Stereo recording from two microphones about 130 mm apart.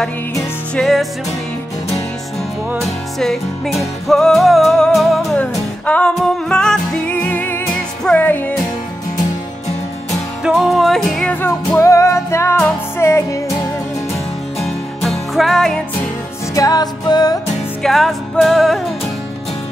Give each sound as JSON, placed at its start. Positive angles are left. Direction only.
{"t": 0.7, "sound": "music", "side_deg": 0}
{"t": 2.8, "sound": "music", "side_deg": 0}
{"t": 10.4, "sound": "music", "side_deg": 0}
{"t": 11.4, "sound": "music", "side_deg": 20}
{"t": 14.6, "sound": "music", "side_deg": 0}
{"t": 16.5, "sound": "music", "side_deg": 30}
{"t": 17.8, "sound": "music", "side_deg": 0}